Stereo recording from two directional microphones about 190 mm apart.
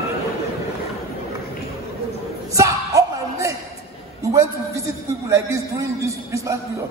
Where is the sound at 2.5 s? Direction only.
15° right (ahead or behind).